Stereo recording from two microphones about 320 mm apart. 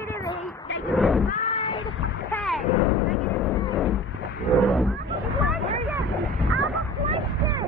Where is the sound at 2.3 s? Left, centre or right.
Centre.